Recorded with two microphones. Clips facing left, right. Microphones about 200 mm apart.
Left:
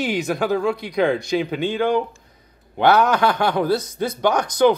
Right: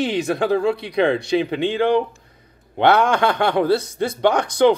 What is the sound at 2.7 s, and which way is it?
Speech, 25° right (ahead or behind).